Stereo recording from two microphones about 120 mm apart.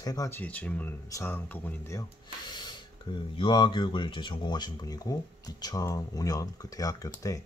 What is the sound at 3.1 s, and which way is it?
Speech, 45° left (ahead or behind).